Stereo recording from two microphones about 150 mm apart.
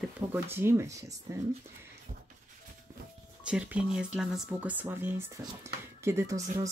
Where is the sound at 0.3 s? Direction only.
15° right (ahead or behind).